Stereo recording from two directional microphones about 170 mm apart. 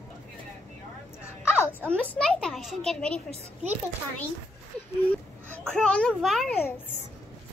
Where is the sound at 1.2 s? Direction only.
15° left (ahead or behind).